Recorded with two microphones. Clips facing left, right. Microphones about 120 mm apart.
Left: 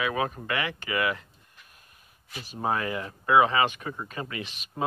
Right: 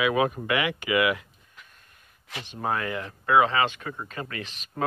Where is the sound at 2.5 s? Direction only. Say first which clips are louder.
Even; 25° left (ahead or behind).